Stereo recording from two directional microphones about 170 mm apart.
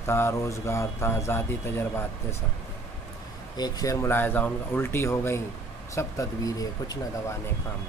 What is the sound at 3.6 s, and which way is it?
Speech, 20° left (ahead or behind).